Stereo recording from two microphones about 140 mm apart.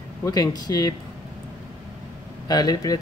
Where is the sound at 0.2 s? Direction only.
25° left (ahead or behind).